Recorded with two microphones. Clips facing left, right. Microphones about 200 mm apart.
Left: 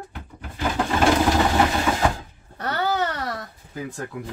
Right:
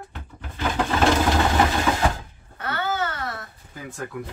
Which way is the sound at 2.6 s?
35° left (ahead or behind).